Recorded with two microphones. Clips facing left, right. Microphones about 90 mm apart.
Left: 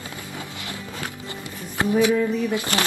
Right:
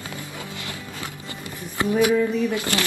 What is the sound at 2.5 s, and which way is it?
Speech, 25° left (ahead or behind).